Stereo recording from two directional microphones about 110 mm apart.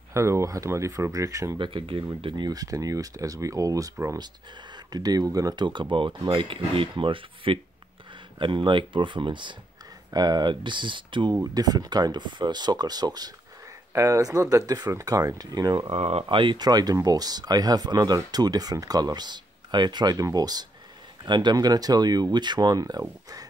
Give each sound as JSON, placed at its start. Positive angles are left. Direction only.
{"t": 0.1, "sound": "speech", "side_deg": -25}
{"t": 1.6, "sound": "speech", "side_deg": -50}
{"t": 11.4, "sound": "speech", "side_deg": -35}
{"t": 15.9, "sound": "speech", "side_deg": -65}